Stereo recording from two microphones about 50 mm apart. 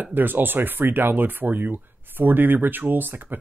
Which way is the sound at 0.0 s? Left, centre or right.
Right.